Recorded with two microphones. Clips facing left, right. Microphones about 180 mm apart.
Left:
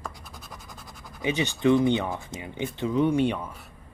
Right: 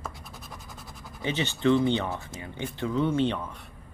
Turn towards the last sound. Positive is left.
turn(degrees=10)  # may be behind; listen again after turning